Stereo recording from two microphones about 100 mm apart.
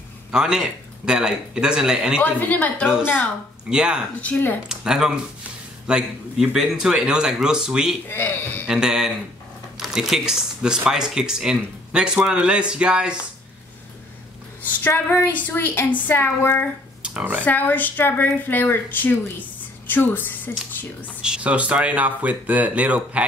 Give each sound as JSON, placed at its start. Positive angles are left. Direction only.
{"t": 0.3, "sound": "speech", "side_deg": -5}
{"t": 2.2, "sound": "a woman's voice", "side_deg": 15}
{"t": 3.7, "sound": "speech", "side_deg": -10}
{"t": 4.2, "sound": "a woman's voice", "side_deg": 15}
{"t": 4.6, "sound": "speech", "side_deg": -5}
{"t": 8.1, "sound": "a woman's voice", "side_deg": 25}
{"t": 8.6, "sound": "speech", "side_deg": -5}
{"t": 14.8, "sound": "a woman's voice", "side_deg": 20}
{"t": 17.0, "sound": "speech", "side_deg": -15}
{"t": 17.5, "sound": "a woman's voice", "side_deg": 20}
{"t": 21.2, "sound": "speech", "side_deg": -10}